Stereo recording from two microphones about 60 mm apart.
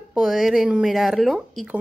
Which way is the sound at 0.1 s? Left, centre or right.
Centre.